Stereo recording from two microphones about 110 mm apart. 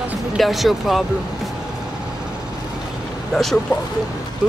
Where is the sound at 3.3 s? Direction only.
5° left (ahead or behind).